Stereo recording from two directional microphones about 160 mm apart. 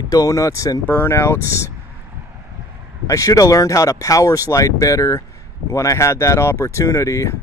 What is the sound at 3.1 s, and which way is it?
Speech, 20° left (ahead or behind).